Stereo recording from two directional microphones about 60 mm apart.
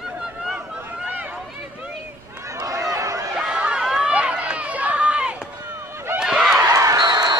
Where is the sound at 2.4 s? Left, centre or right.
Right.